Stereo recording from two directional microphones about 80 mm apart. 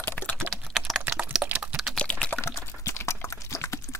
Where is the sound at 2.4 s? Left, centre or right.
Left.